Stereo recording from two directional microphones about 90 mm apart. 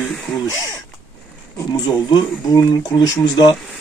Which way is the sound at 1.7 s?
45° left (ahead or behind).